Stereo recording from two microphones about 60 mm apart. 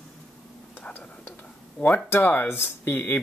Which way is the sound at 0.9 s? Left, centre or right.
Left.